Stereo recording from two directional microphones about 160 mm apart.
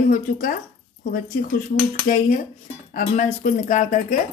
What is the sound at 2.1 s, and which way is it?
Speech, 60° left (ahead or behind).